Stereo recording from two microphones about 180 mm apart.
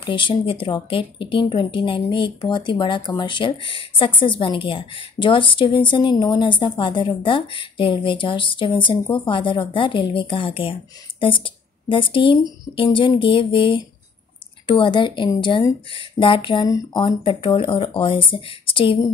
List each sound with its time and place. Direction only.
0.0 s speech: 25° left (ahead or behind)